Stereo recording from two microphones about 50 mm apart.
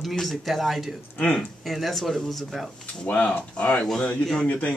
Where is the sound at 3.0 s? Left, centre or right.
Left.